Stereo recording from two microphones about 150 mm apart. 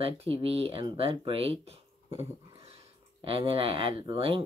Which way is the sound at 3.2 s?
40° right (ahead or behind).